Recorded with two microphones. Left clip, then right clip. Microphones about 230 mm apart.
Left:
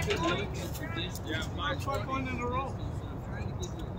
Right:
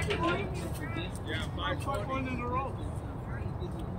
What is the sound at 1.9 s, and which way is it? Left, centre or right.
Speech, left.